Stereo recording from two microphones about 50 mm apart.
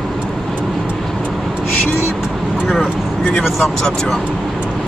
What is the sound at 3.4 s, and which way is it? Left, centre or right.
Speech, centre.